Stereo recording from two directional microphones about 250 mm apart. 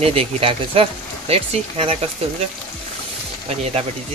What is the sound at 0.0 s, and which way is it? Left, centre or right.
Speech, right.